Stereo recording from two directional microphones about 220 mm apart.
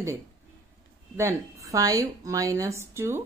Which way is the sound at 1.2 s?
15° right (ahead or behind).